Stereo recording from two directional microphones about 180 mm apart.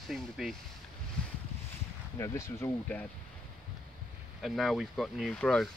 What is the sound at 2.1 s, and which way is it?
Speech, 15° left (ahead or behind).